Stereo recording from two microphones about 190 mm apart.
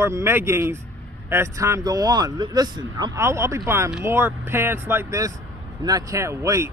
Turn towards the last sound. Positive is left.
turn(degrees=-15)  # may be behind; listen again after turning